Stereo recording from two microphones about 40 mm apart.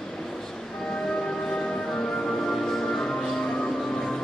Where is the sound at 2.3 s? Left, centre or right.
Centre.